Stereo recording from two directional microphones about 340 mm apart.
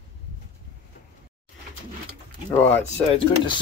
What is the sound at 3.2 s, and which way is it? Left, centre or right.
Speech, centre.